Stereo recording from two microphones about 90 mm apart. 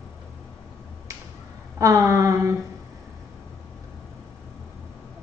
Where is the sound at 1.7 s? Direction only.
35° right (ahead or behind).